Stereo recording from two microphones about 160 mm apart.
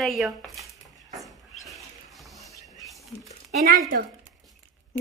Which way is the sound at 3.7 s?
60° right (ahead or behind).